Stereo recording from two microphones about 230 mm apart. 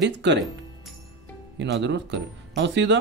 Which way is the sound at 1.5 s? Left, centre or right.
Right.